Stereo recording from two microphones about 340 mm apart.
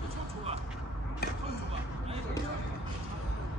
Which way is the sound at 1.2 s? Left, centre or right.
Left.